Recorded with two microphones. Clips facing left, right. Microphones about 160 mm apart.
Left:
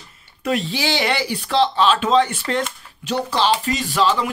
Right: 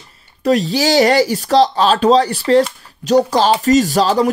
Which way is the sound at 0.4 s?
40° right (ahead or behind).